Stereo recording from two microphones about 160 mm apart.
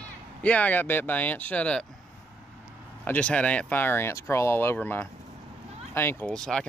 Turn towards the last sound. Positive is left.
turn(degrees=5)  # may be behind; listen again after turning